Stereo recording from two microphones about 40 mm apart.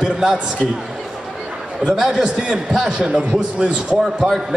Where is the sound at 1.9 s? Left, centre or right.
Centre.